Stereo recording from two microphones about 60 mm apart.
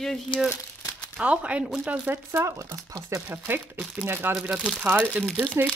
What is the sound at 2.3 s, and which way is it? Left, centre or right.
Speech, right.